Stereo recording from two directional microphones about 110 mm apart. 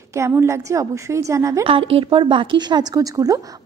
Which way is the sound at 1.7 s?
55° right (ahead or behind).